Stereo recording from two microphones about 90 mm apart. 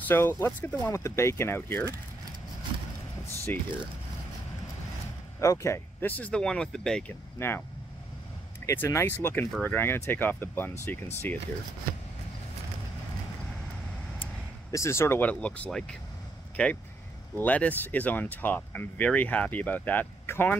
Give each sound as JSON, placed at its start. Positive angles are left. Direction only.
{"t": 0.1, "sound": "speech", "side_deg": 25}
{"t": 0.9, "sound": "speech", "side_deg": 35}
{"t": 3.5, "sound": "speech", "side_deg": 20}
{"t": 5.4, "sound": "speech", "side_deg": 35}
{"t": 6.0, "sound": "speech", "side_deg": 15}
{"t": 7.1, "sound": "speech", "side_deg": 25}
{"t": 8.7, "sound": "speech", "side_deg": 25}
{"t": 14.7, "sound": "speech", "side_deg": 35}
{"t": 15.2, "sound": "speech", "side_deg": 15}